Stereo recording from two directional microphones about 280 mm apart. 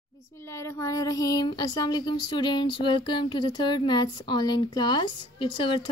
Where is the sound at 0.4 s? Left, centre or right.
Centre.